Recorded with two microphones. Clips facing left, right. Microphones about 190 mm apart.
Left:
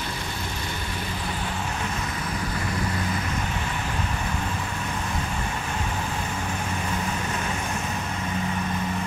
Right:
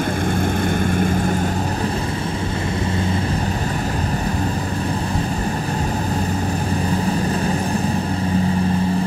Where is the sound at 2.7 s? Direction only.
25° right (ahead or behind).